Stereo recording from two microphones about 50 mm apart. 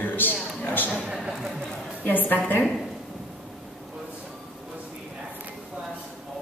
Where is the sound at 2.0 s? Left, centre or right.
Left.